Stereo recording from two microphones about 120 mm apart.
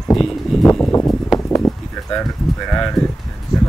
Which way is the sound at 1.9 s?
15° left (ahead or behind).